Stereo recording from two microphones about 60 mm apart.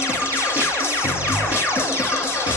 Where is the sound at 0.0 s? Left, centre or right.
Left.